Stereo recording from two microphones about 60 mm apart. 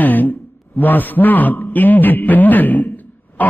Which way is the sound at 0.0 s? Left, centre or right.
Left.